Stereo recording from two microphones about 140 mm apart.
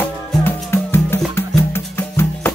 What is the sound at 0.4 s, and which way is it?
Music, 15° left (ahead or behind).